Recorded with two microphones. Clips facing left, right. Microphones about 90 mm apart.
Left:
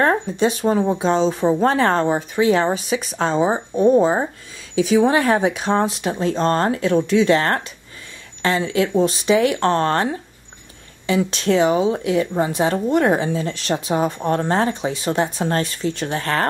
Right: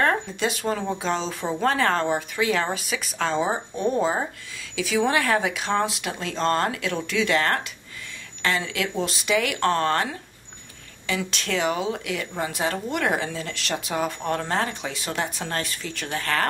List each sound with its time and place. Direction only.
0.0 s speech: 30° left (ahead or behind)
3.5 s speech: 20° left (ahead or behind)